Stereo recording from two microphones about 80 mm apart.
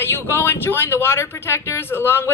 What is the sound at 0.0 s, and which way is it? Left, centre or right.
Speech, left.